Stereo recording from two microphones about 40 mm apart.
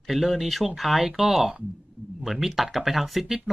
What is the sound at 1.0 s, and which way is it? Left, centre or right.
Speech, centre.